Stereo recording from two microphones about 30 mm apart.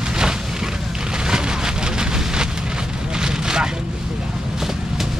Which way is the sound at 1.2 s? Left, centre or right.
Right.